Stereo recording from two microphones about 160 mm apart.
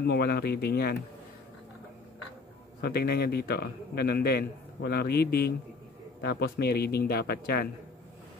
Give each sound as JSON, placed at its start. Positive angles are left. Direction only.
{"t": 0.0, "sound": "speech", "side_deg": 85}
{"t": 2.8, "sound": "a man's voice", "side_deg": 80}